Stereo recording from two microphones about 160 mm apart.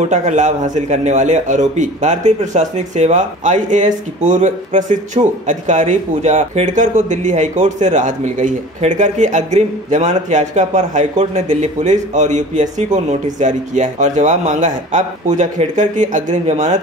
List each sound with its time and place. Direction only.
0.0 s a man's voice: 45° right (ahead or behind)